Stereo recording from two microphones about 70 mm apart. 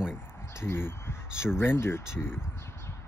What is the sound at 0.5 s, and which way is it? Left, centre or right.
Speech, left.